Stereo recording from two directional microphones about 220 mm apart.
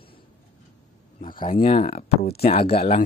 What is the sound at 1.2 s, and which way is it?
Speech, 40° left (ahead or behind).